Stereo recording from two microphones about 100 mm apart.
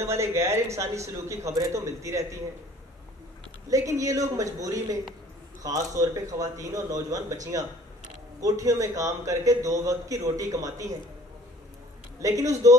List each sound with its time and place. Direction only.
0.0 s a man's voice: 25° right (ahead or behind)
3.7 s a man's voice: 35° right (ahead or behind)
12.2 s a man's voice: 35° right (ahead or behind)